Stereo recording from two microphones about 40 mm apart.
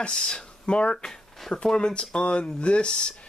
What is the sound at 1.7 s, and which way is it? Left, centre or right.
Speech, left.